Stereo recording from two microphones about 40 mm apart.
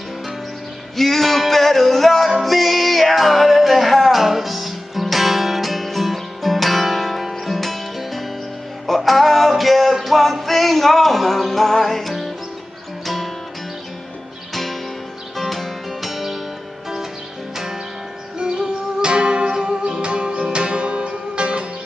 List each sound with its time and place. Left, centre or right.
0.9 s music: centre
14.5 s music: centre
18.4 s music: right